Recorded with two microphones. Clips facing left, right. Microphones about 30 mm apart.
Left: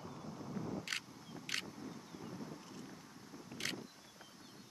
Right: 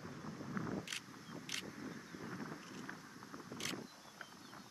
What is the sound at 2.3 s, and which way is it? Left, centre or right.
Wind, right.